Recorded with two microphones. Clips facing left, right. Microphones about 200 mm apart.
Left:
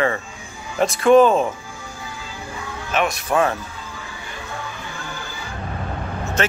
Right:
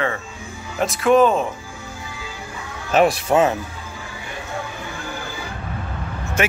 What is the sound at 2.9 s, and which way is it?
Speech, 35° right (ahead or behind).